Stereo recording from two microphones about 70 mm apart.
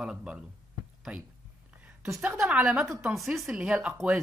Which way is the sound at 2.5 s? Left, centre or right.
Centre.